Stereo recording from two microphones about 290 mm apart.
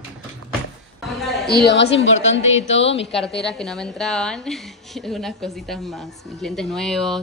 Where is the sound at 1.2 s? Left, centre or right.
Centre.